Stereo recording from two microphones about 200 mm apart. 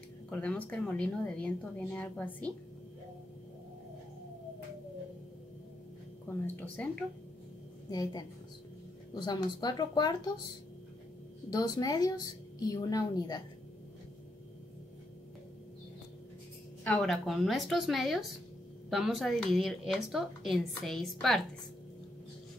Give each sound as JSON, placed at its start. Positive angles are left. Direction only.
{"t": 0.3, "sound": "a woman's voice", "side_deg": 5}
{"t": 6.4, "sound": "a woman's voice", "side_deg": 10}
{"t": 7.9, "sound": "a woman's voice", "side_deg": 20}
{"t": 11.5, "sound": "a woman's voice", "side_deg": 20}
{"t": 16.8, "sound": "a woman's voice", "side_deg": 5}